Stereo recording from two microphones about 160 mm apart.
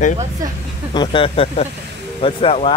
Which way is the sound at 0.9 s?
35° left (ahead or behind).